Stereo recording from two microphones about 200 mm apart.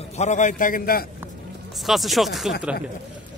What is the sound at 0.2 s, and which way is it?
Speech, 40° left (ahead or behind).